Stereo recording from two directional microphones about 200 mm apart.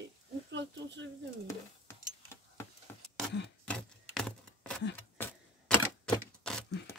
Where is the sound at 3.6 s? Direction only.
5° left (ahead or behind).